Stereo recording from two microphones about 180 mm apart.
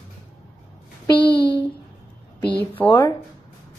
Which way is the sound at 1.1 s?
25° left (ahead or behind).